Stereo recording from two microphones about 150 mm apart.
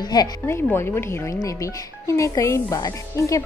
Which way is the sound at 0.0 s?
25° left (ahead or behind).